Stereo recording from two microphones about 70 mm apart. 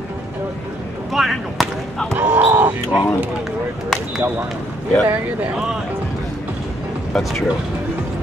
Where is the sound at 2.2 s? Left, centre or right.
Centre.